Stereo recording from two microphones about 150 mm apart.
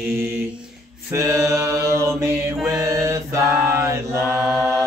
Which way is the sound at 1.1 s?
20° right (ahead or behind).